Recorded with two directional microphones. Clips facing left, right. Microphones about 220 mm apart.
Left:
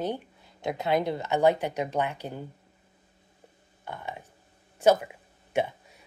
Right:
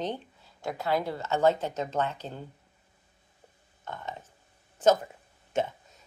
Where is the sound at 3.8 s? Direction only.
10° left (ahead or behind).